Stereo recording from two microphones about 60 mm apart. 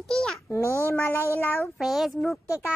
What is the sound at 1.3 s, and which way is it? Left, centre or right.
Child singing, left.